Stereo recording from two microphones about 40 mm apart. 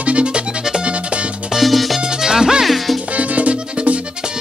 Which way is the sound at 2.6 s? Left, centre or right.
Centre.